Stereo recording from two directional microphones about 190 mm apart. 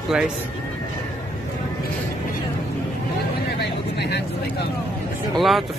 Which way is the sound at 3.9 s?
60° left (ahead or behind).